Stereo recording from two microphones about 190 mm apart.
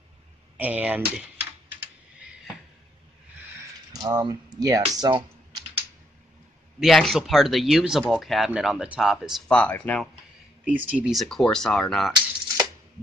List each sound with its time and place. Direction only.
0.6 s typing: 10° right (ahead or behind)
3.9 s speech: 20° right (ahead or behind)
6.8 s speech: centre (ahead or behind)
10.7 s speech: 5° right (ahead or behind)